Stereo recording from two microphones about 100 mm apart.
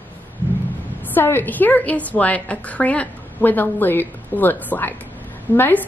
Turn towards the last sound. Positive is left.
turn(degrees=20)  # may be behind; listen again after turning